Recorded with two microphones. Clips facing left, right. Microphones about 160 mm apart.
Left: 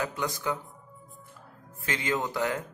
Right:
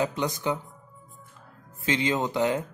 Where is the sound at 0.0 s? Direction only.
20° right (ahead or behind).